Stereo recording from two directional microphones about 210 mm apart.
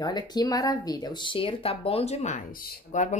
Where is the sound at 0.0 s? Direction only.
20° left (ahead or behind).